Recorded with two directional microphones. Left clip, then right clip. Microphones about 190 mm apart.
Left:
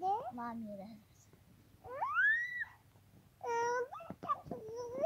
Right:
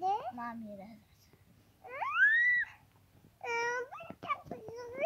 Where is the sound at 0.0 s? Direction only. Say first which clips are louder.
Right 3 dB; 10° right (ahead or behind).